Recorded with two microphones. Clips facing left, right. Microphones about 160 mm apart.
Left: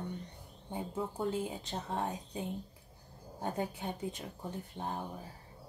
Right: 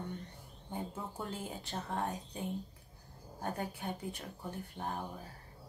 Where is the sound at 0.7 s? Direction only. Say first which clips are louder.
Left 4 dB; 20° left (ahead or behind).